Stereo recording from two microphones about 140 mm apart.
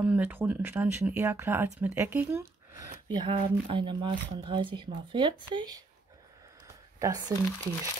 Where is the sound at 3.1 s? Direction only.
35° right (ahead or behind).